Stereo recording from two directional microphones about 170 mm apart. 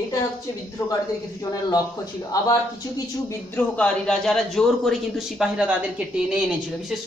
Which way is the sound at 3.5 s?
5° left (ahead or behind).